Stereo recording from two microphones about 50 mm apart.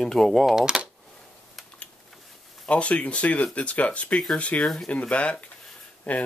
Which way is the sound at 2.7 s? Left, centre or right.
Left.